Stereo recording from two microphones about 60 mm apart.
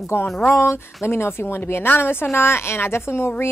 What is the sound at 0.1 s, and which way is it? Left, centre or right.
A woman's voice, left.